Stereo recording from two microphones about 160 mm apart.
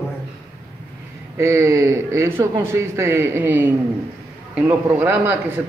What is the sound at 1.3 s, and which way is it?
Speech, 15° right (ahead or behind).